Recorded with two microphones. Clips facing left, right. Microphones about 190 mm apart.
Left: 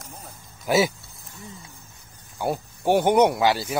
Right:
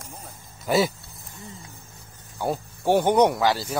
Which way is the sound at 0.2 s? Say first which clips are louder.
Even; 5° left (ahead or behind).